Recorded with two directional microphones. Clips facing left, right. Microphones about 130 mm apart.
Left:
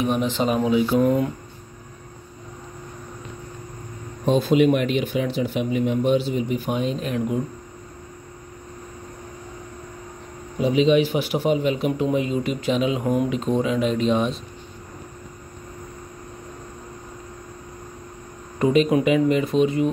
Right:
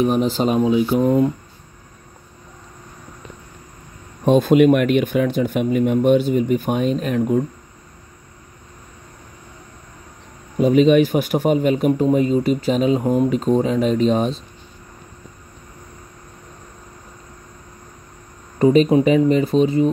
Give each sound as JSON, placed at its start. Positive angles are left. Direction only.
{"t": 0.0, "sound": "speech", "side_deg": -40}
{"t": 0.7, "sound": "speech", "side_deg": -20}
{"t": 4.3, "sound": "speech", "side_deg": -50}
{"t": 10.6, "sound": "speech", "side_deg": -50}
{"t": 13.0, "sound": "speech", "side_deg": -25}
{"t": 13.3, "sound": "speech", "side_deg": -40}
{"t": 18.6, "sound": "speech", "side_deg": -35}